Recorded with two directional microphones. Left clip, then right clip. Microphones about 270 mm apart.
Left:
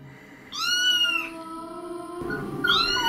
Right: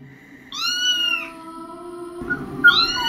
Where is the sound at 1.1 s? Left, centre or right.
Centre.